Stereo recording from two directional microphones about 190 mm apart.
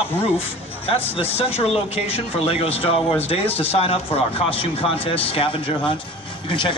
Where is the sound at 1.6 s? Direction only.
30° left (ahead or behind).